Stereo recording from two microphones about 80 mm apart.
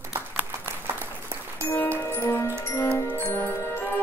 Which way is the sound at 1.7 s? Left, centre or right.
Left.